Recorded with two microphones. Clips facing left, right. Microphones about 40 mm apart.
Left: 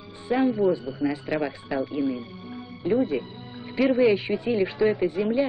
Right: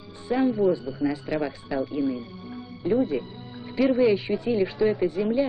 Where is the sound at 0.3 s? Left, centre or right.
Left.